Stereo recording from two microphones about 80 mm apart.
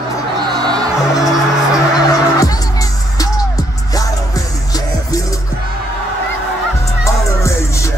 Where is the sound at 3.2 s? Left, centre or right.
Left.